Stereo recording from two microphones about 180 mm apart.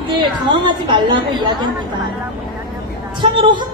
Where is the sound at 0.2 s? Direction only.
25° right (ahead or behind).